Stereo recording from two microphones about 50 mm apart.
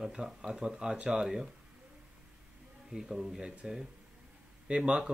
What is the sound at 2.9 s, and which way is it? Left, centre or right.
Speech, centre.